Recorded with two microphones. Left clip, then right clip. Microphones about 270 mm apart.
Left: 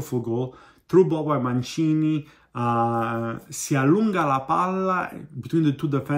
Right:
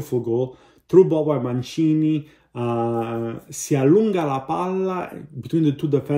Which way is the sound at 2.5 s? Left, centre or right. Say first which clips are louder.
Left 1 dB; left.